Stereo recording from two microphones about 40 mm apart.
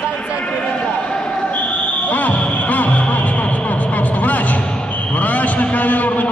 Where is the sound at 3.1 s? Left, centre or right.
Left.